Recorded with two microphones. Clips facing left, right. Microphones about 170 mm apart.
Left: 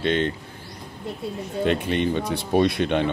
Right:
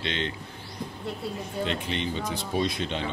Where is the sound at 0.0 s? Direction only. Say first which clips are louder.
Left 9 dB; 50° left (ahead or behind).